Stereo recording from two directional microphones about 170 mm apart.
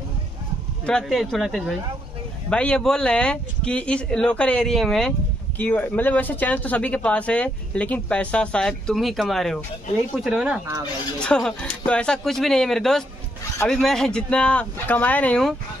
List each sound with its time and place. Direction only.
0.8 s speech: 5° left (ahead or behind)